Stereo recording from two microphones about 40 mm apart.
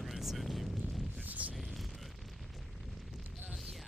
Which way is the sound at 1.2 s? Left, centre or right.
Right.